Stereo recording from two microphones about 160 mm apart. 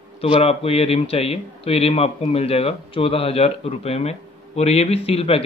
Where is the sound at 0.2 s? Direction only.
35° left (ahead or behind).